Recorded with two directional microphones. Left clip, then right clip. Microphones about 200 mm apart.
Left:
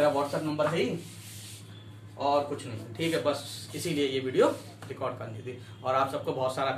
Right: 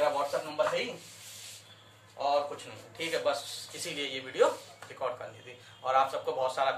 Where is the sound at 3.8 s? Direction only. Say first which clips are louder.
Left 7 dB; 5° right (ahead or behind).